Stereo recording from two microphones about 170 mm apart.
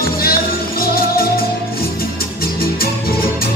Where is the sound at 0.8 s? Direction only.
60° left (ahead or behind).